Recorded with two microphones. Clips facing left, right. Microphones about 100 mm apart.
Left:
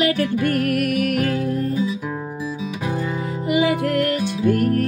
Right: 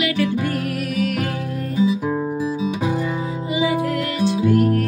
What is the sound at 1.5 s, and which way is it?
Music, 35° left (ahead or behind).